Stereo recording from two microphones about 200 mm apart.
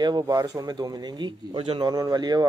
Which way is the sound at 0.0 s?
20° right (ahead or behind).